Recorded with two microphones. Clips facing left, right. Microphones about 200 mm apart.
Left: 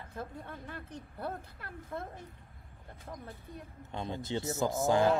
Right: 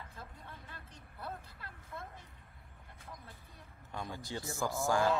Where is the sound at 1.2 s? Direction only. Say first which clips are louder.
Left 5 dB; 50° left (ahead or behind).